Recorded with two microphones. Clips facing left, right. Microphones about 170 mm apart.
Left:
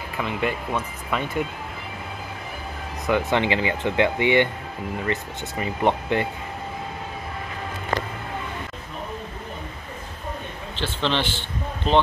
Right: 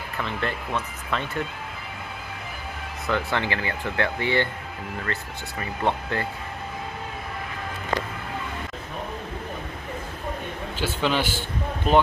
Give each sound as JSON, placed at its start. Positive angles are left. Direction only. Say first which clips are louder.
{"t": 0.2, "sound": "speech", "louder": "left 3 dB", "side_deg": 10}
{"t": 3.1, "sound": "speech", "louder": "left 5 dB", "side_deg": 20}
{"t": 10.8, "sound": "speech", "louder": "even", "side_deg": -10}